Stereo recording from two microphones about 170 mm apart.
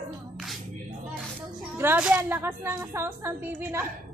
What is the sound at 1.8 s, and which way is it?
A woman's voice, 10° right (ahead or behind).